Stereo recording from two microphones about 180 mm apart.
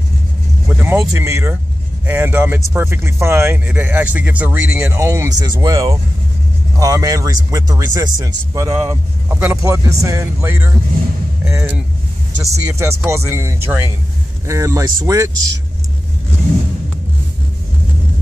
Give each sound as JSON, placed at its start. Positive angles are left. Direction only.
{"t": 0.7, "sound": "speech", "side_deg": -10}